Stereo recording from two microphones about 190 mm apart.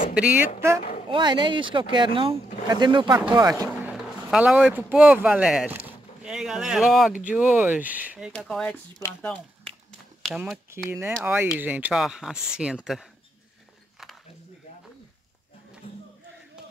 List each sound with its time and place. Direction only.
0.1 s speech: 5° right (ahead or behind)
1.1 s speech: 25° right (ahead or behind)
3.8 s speech: 5° right (ahead or behind)
8.3 s speech: 5° left (ahead or behind)
10.2 s speech: 5° right (ahead or behind)